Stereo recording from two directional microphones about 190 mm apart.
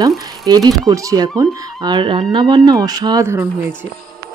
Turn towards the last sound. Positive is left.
turn(degrees=-15)  # may be behind; listen again after turning